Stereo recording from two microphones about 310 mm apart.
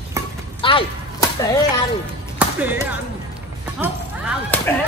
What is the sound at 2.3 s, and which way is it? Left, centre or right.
Speech, centre.